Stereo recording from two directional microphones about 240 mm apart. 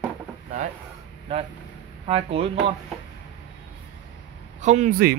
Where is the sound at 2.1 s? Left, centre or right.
Right.